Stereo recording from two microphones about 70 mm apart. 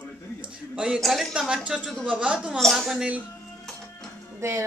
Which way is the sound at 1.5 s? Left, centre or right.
Centre.